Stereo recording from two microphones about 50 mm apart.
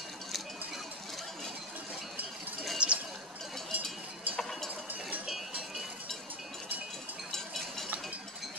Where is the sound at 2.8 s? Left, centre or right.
Right.